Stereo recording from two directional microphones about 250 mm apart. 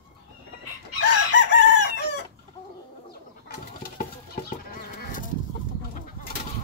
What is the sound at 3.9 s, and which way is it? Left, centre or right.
Goat, left.